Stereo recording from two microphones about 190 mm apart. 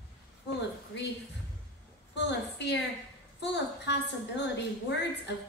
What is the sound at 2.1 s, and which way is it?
A woman's voice, 65° left (ahead or behind).